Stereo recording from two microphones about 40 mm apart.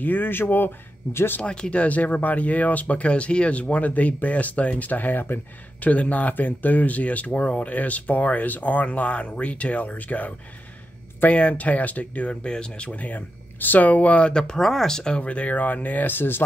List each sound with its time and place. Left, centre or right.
0.0 s speech: left
1.4 s speech: left
12.4 s speech: left
14.6 s speech: centre
15.1 s speech: left